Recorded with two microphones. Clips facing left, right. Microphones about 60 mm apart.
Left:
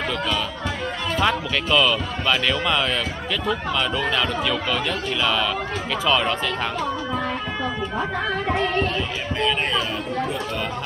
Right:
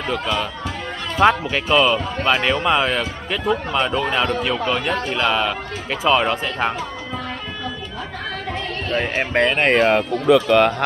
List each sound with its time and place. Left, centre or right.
1.2 s speech: right
8.9 s speech: right